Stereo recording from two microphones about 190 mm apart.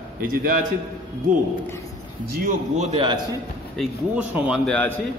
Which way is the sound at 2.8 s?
30° right (ahead or behind).